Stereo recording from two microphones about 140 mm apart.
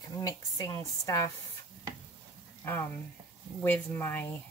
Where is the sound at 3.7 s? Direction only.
15° left (ahead or behind).